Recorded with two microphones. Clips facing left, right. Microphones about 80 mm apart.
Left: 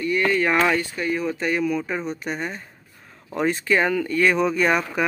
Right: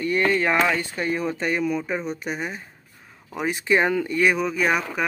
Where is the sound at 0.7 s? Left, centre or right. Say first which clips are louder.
Left 1 dB; right.